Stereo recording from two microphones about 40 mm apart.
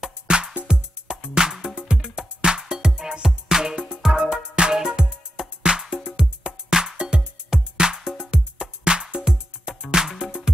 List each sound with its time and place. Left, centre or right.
0.3 s music: right
4.2 s music: right